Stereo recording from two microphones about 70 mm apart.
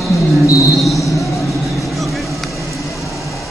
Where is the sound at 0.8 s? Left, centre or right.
Centre.